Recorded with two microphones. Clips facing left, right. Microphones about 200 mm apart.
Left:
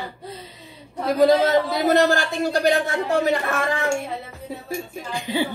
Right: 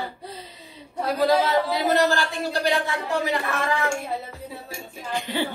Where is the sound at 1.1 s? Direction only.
45° left (ahead or behind).